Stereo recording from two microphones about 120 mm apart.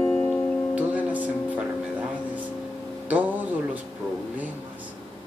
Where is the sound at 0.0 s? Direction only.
15° left (ahead or behind).